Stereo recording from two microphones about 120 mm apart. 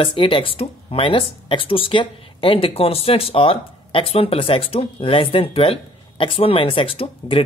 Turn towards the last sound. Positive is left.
turn(degrees=50)  # may be behind; listen again after turning